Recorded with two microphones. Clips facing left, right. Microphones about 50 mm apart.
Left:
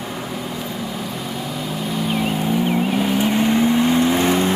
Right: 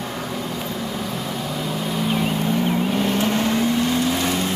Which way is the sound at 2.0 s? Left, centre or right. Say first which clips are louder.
Left 1 dB; centre.